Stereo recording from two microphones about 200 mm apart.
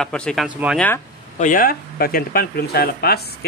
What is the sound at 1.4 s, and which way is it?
Speech, 45° left (ahead or behind).